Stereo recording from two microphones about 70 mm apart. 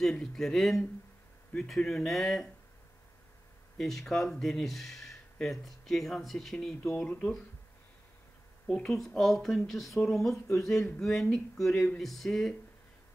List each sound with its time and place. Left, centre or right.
0.0 s speech: centre
3.7 s speech: centre
7.0 s speech: centre
8.7 s speech: centre